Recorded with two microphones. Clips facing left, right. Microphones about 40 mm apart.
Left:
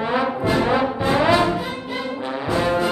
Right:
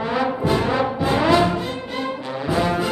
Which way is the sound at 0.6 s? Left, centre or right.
Centre.